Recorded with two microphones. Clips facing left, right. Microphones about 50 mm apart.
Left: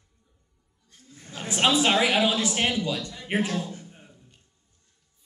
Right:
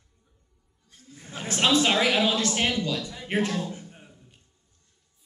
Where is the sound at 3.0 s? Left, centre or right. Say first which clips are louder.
Right 1 dB; centre.